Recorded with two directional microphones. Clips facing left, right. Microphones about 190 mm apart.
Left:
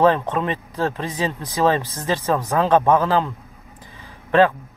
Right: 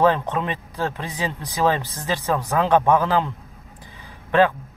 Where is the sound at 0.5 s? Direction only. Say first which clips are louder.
Left 3 dB; 15° right (ahead or behind).